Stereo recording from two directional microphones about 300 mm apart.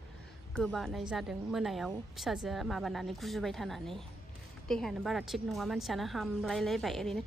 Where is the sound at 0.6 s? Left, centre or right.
Centre.